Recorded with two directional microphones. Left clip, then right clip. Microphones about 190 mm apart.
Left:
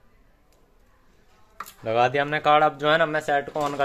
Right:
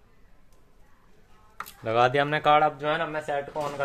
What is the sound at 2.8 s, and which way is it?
Speech, 45° left (ahead or behind).